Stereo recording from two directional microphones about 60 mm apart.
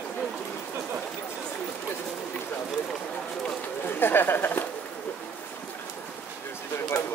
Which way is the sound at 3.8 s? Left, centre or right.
Left.